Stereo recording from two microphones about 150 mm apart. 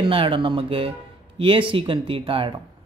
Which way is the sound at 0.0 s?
35° right (ahead or behind).